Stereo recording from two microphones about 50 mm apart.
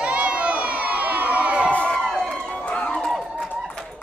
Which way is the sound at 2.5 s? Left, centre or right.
Centre.